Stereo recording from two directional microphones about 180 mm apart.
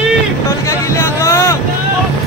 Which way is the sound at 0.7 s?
15° left (ahead or behind).